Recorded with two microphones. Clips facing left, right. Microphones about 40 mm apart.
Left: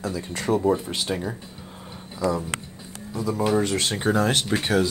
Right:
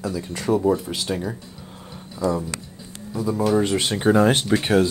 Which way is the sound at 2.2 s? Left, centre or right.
Left.